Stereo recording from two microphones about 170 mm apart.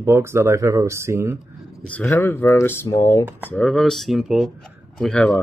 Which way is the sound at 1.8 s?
10° left (ahead or behind).